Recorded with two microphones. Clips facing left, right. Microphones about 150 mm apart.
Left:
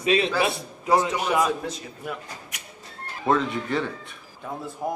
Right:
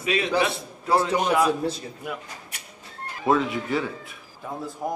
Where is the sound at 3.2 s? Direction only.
5° right (ahead or behind).